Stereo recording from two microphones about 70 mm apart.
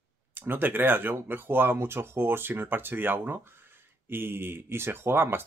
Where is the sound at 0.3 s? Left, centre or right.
Right.